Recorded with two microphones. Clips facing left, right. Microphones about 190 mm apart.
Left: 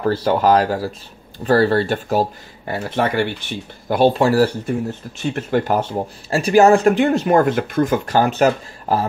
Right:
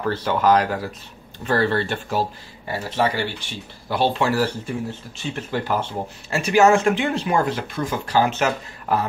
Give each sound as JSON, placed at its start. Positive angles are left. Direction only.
{"t": 0.0, "sound": "speech", "side_deg": 35}
{"t": 5.2, "sound": "speech", "side_deg": 50}